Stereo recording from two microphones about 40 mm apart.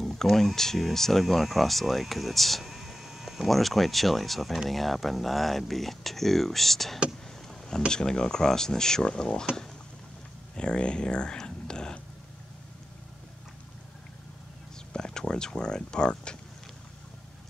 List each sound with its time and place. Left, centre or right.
0.0 s speech: centre
7.4 s a sound: centre
7.9 s speech: centre
10.5 s speech: left
15.0 s speech: centre